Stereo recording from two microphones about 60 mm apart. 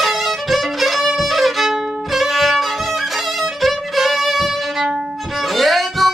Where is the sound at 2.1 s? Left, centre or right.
Centre.